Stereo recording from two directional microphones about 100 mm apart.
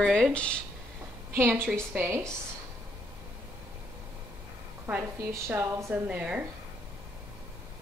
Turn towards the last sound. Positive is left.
turn(degrees=-15)  # may be behind; listen again after turning